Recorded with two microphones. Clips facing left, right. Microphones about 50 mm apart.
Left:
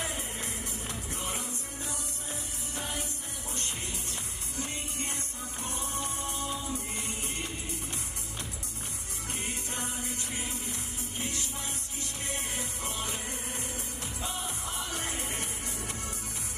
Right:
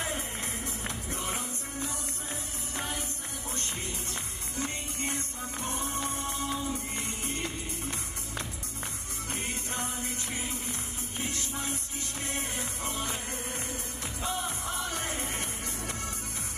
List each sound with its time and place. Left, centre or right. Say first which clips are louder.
0.0 s music: right 2 dB; right
4.6 s music: right 2 dB; right
11.2 s music: right 4 dB; right
14.9 s music: right 2 dB; right